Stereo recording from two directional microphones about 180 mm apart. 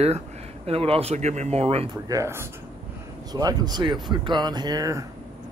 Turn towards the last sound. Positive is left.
turn(degrees=-20)  # may be behind; listen again after turning